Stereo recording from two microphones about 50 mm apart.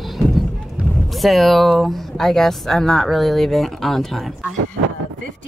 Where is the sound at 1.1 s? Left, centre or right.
Centre.